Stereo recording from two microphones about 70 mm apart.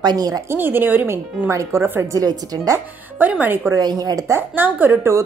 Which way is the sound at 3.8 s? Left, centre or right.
Right.